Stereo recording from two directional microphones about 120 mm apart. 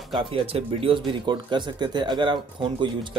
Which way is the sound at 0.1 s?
45° right (ahead or behind).